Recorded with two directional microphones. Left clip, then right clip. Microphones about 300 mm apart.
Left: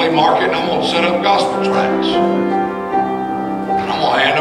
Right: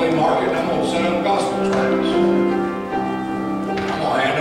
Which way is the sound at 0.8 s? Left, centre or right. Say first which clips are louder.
Left 5 dB; centre.